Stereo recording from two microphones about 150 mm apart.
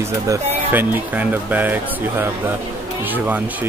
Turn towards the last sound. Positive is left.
turn(degrees=-10)  # may be behind; listen again after turning